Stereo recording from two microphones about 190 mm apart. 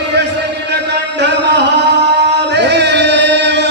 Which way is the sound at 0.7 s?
65° right (ahead or behind).